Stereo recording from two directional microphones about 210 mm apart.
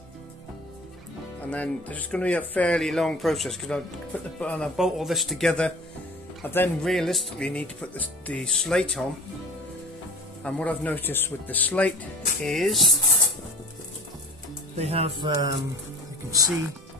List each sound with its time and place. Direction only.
1.5 s speech: 5° left (ahead or behind)
10.4 s speech: 5° left (ahead or behind)
14.8 s speech: 30° right (ahead or behind)